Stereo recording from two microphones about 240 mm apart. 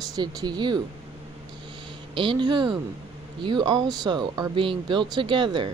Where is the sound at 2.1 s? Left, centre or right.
Centre.